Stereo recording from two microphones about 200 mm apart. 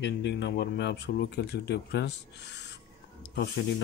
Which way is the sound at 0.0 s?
60° left (ahead or behind).